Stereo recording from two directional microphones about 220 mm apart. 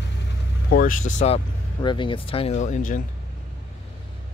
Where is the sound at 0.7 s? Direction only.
40° left (ahead or behind).